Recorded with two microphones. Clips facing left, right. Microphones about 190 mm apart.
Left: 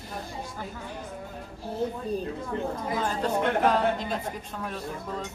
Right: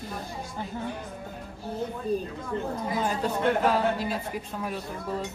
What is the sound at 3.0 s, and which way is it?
Speech, 10° right (ahead or behind).